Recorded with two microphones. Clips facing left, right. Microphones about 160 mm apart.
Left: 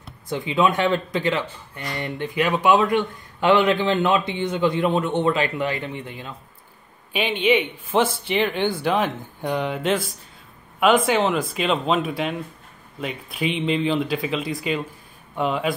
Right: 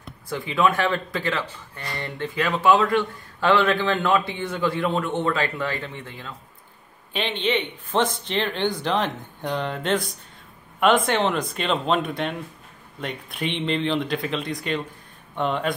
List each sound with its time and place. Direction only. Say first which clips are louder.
0.3 s speech: left 1 dB; 20° left (ahead or behind); by 15.7 s 5° left (ahead or behind)